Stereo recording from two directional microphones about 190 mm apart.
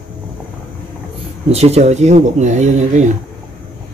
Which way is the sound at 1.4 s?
35° right (ahead or behind).